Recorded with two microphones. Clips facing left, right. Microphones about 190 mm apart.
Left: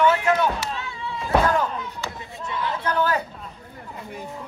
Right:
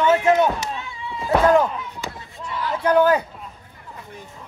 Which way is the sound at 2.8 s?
15° right (ahead or behind).